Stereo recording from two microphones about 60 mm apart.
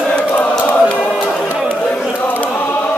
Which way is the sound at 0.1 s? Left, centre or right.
Centre.